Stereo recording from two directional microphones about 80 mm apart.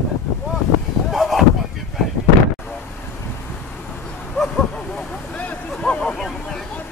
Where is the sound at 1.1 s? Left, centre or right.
Centre.